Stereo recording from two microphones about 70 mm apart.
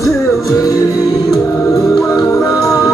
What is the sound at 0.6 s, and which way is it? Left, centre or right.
Music, left.